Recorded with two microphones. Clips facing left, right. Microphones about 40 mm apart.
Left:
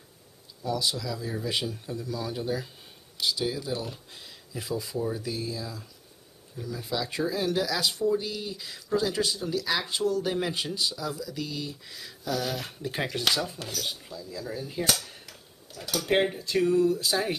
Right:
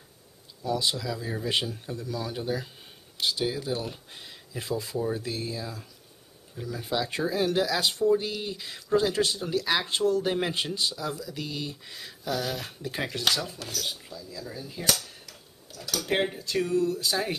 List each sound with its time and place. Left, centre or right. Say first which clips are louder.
0.9 s speech: right 1 dB; centre
2.1 s speech: even; centre; by 4.8 s right
4.8 s speech: right 1 dB; centre
5.1 s speech: right 1 dB; right; by 12.4 s centre
12.4 s speech: left 1 dB; centre
16.1 s speech: left 3 dB; centre